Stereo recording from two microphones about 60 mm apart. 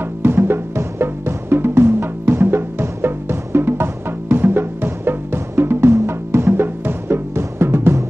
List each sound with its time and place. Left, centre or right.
0.2 s music: right